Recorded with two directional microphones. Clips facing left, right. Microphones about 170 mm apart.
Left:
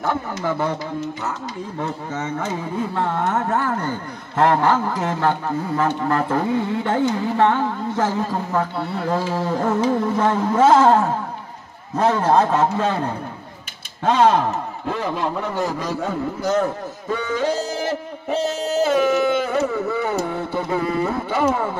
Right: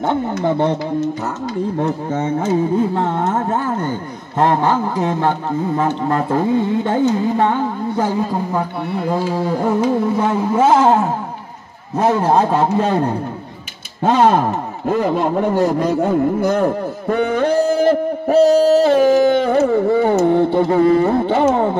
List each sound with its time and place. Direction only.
0.0 s carnatic music: 25° right (ahead or behind)
2.0 s carnatic music: 30° right (ahead or behind); by 12.8 s 15° right (ahead or behind)
14.0 s carnatic music: 45° right (ahead or behind)
14.9 s a man's voice: 50° right (ahead or behind)
19.0 s carnatic music: 35° right (ahead or behind)
20.5 s carnatic music: 50° right (ahead or behind)
21.3 s carnatic music: 25° right (ahead or behind)